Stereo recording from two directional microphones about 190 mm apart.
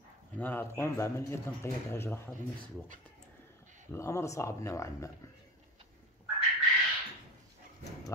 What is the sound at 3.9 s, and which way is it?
Speech, 15° left (ahead or behind).